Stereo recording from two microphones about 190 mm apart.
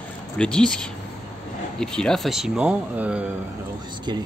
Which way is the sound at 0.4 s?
5° left (ahead or behind).